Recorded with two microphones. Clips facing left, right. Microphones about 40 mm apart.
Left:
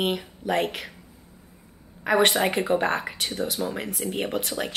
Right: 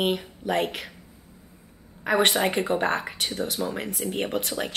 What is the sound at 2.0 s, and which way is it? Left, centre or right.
Speech, centre.